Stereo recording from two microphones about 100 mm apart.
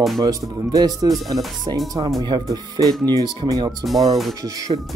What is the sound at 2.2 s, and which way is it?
Speech, 40° right (ahead or behind).